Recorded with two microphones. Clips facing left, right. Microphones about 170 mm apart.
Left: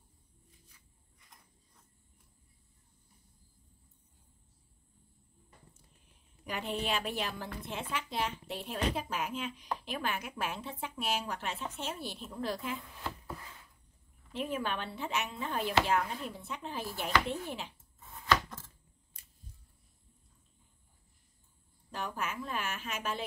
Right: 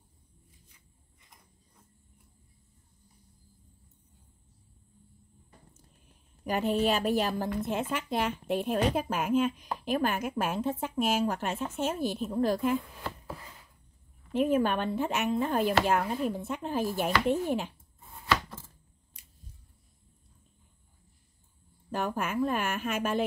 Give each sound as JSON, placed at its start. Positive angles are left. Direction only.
{"t": 6.4, "sound": "speech", "side_deg": -45}
{"t": 14.3, "sound": "speech", "side_deg": -50}
{"t": 21.9, "sound": "speech", "side_deg": -50}